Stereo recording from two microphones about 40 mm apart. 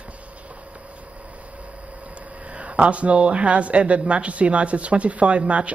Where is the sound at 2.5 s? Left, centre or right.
Right.